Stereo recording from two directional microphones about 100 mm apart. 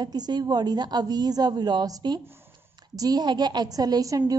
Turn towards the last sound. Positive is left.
turn(degrees=-40)  # may be behind; listen again after turning